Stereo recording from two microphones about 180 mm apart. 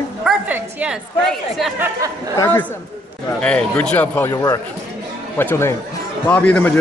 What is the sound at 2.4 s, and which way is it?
A man's voice, 10° left (ahead or behind).